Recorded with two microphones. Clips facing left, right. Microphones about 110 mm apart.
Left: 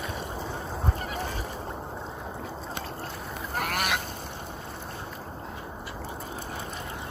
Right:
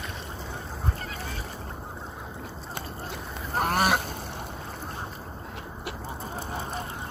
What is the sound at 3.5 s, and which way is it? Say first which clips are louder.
Goose: right 5 dB; 35° right (ahead or behind).